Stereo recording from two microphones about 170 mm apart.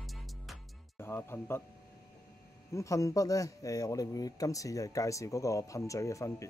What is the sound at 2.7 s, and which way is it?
Speech, 20° left (ahead or behind).